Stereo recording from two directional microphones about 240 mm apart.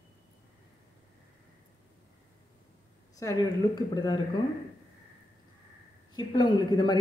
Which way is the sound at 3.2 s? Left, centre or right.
Centre.